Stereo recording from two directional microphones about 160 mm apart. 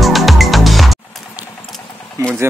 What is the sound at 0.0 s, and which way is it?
Music, centre (ahead or behind).